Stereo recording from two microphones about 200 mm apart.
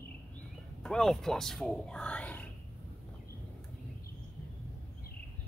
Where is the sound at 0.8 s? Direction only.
Centre (ahead or behind).